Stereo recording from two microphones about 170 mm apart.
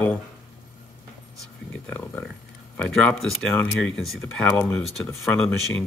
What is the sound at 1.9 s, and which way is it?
Speech, 10° left (ahead or behind).